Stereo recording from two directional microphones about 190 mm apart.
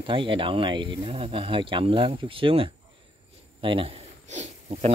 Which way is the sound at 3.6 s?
25° right (ahead or behind).